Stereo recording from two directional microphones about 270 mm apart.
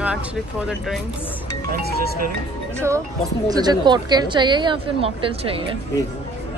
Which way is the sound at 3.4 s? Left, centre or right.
Centre.